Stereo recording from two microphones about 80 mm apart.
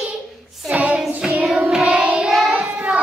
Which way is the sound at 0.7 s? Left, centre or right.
Centre.